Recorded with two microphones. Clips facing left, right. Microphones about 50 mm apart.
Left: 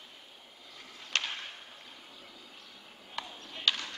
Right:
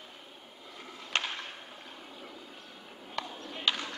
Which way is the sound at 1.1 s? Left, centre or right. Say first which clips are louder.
Right 1 dB; centre.